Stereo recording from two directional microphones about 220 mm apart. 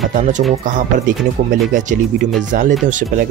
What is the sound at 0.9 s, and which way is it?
Speech, 35° right (ahead or behind).